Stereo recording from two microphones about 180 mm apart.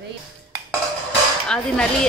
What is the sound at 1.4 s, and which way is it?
Speech, 5° left (ahead or behind).